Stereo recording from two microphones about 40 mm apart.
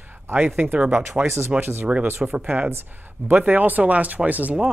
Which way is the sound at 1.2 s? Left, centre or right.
Right.